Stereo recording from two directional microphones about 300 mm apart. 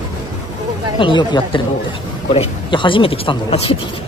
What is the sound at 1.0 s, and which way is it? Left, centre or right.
Speech, centre.